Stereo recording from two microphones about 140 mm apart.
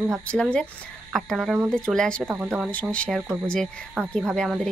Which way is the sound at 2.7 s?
10° left (ahead or behind).